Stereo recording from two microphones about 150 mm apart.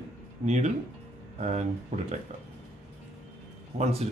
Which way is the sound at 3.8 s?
45° right (ahead or behind).